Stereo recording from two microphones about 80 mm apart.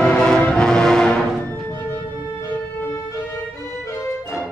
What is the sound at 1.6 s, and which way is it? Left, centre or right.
Music, left.